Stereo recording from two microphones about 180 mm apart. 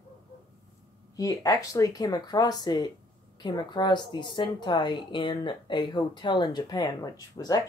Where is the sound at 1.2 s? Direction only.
20° left (ahead or behind).